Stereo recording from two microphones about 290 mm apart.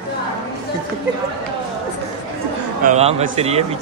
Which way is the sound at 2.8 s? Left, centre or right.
Right.